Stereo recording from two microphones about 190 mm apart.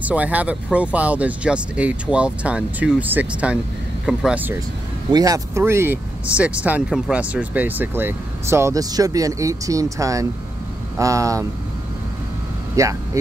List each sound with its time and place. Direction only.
0.0 s speech: 10° right (ahead or behind)
5.1 s speech: 20° right (ahead or behind)
12.7 s speech: 15° right (ahead or behind)